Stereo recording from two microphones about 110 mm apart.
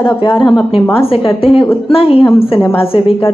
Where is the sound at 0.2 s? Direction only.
50° left (ahead or behind).